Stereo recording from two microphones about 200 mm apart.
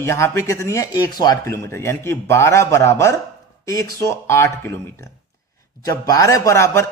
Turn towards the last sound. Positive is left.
turn(degrees=15)  # may be behind; listen again after turning